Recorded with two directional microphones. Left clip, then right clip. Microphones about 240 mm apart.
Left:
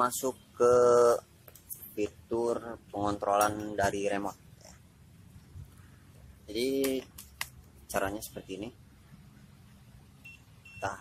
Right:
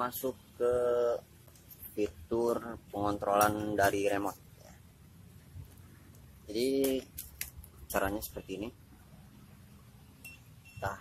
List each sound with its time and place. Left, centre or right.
0.0 s speech: centre
6.4 s speech: centre